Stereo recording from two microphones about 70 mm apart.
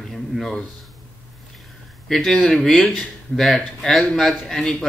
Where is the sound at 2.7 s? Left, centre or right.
Centre.